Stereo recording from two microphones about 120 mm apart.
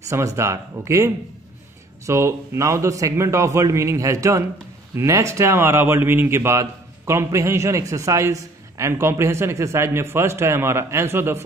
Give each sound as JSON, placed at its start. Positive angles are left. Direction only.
{"t": 0.1, "sound": "speech", "side_deg": -25}